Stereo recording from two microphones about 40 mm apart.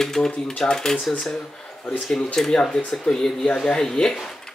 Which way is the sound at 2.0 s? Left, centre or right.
Left.